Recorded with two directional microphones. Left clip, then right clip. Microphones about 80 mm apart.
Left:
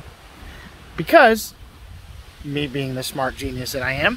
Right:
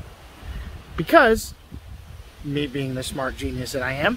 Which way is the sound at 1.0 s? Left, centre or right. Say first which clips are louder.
Left 3 dB; right.